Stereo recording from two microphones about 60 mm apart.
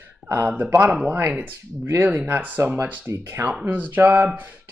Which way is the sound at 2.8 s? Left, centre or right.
Right.